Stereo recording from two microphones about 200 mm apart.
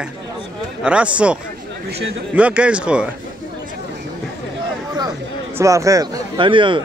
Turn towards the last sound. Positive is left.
turn(degrees=-25)  # may be behind; listen again after turning